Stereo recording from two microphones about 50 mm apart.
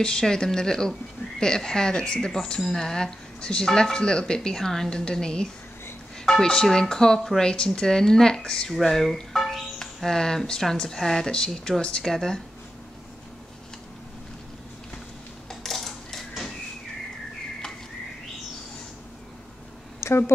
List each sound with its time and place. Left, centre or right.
0.0 s speech: centre
8.7 s speech: centre
15.6 s coin: centre
20.0 s a woman's voice: left